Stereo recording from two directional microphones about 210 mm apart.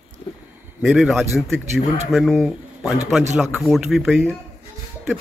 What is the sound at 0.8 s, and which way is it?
A man's voice, 5° right (ahead or behind).